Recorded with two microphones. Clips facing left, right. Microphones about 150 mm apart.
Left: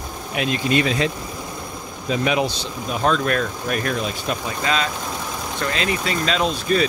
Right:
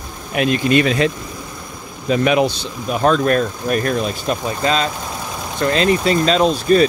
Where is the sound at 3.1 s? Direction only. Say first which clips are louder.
Right 5 dB; 35° right (ahead or behind).